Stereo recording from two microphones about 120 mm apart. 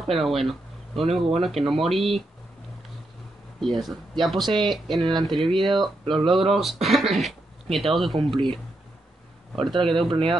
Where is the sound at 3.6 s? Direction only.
Centre (ahead or behind).